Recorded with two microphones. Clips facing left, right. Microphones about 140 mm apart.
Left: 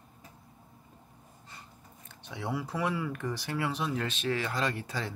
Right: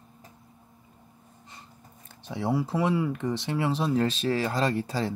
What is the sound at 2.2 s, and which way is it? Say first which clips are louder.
Speech: right 7 dB; 35° right (ahead or behind).